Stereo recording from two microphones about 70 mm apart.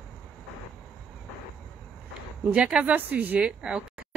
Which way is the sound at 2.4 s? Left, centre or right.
Centre.